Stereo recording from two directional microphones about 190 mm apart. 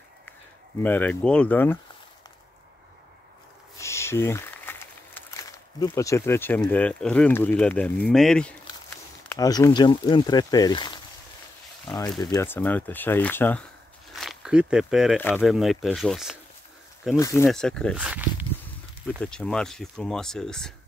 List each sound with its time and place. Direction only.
0.8 s speech: 10° left (ahead or behind)
3.7 s speech: 15° left (ahead or behind)
9.3 s speech: 20° left (ahead or behind)
14.1 s speech: centre (ahead or behind)
15.1 s speech: 10° left (ahead or behind)
15.4 s speech: centre (ahead or behind)
17.2 s speech: 15° left (ahead or behind)
17.5 s speech: 5° left (ahead or behind)
18.0 s walk: 10° right (ahead or behind)
19.1 s speech: 5° left (ahead or behind)